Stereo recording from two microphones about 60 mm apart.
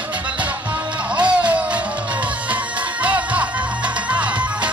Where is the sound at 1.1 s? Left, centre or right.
Centre.